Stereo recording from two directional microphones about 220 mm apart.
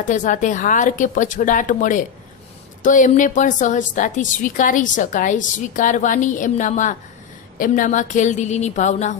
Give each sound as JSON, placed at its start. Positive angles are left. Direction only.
{"t": 0.0, "sound": "a woman's voice", "side_deg": 35}